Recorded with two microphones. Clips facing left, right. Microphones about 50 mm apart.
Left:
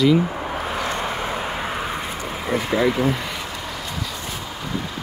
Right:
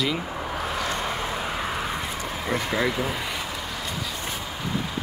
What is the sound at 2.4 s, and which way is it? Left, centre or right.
Speech, centre.